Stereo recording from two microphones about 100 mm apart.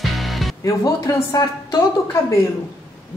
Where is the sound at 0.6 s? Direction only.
35° left (ahead or behind).